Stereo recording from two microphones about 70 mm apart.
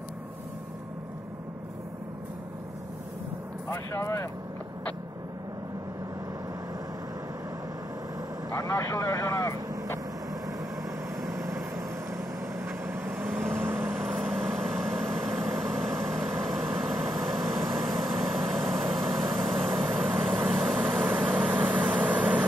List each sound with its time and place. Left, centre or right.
3.7 s speech: left
8.5 s speech: left
11.2 s vehicle: right
14.3 s vehicle: centre
20.2 s vehicle: centre